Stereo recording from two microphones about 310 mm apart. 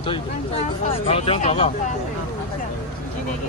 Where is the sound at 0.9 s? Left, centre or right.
Centre.